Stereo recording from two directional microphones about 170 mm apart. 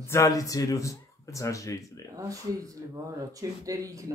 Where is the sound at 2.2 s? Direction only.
20° right (ahead or behind).